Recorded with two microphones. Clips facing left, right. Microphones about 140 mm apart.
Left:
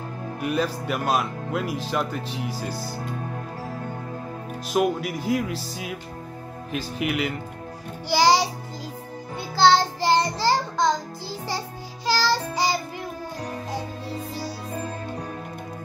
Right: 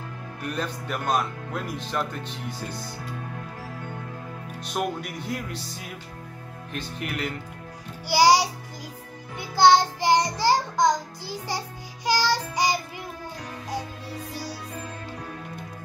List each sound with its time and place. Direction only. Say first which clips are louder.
0.4 s speech: left 6 dB; 5° left (ahead or behind)
1.9 s music: left 3 dB; 5° left (ahead or behind)
4.6 s music: left 6 dB; 5° left (ahead or behind)
8.1 s music: even; 15° right (ahead or behind)
9.6 s child singing: right 1 dB; 15° right (ahead or behind)
12.1 s music: left 1 dB; 15° right (ahead or behind)